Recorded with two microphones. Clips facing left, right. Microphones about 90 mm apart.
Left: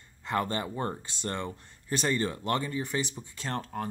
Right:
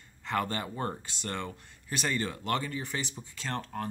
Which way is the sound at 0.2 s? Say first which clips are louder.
Left 2 dB; 25° left (ahead or behind).